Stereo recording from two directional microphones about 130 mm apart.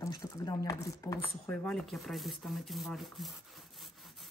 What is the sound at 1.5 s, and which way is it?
Rub, 5° left (ahead or behind).